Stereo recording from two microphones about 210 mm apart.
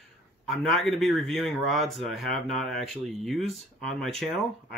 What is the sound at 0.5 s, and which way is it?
A man's voice, centre (ahead or behind).